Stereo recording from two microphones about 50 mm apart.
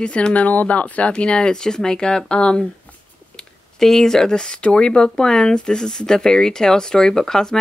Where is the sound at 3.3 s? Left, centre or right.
Centre.